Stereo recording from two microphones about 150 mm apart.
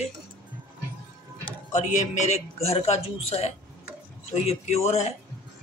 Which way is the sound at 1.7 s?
50° left (ahead or behind).